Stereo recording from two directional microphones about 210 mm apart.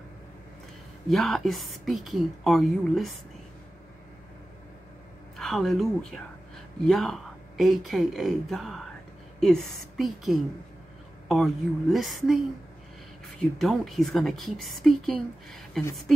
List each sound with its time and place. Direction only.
1.0 s a woman's voice: centre (ahead or behind)
5.4 s a woman's voice: centre (ahead or behind)
13.4 s a woman's voice: centre (ahead or behind)